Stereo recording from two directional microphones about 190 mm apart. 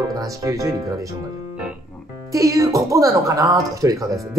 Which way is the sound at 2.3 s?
15° right (ahead or behind).